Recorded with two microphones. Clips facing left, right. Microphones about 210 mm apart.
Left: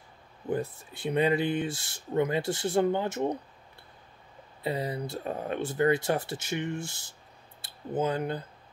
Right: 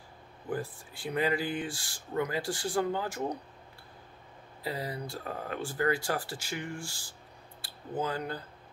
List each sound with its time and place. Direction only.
0.5 s speech: 25° left (ahead or behind)
4.6 s speech: 25° left (ahead or behind)